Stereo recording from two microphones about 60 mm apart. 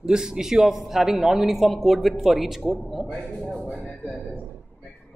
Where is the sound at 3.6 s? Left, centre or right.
Left.